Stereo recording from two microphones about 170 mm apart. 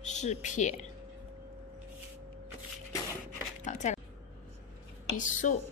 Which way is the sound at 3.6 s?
45° left (ahead or behind).